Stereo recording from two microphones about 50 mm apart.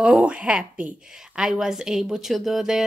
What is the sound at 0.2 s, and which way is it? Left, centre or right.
Speech, right.